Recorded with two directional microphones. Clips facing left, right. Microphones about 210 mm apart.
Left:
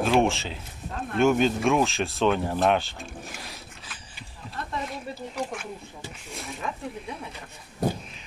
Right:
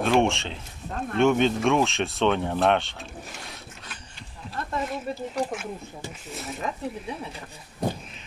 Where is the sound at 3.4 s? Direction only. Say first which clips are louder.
Even; centre (ahead or behind).